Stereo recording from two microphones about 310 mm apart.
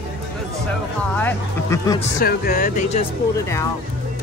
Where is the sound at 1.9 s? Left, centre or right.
Left.